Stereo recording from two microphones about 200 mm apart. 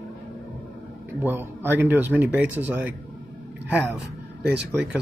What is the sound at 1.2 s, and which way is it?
Speech, 10° right (ahead or behind).